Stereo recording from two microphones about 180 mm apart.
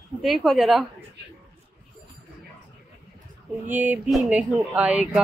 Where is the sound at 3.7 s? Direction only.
10° right (ahead or behind).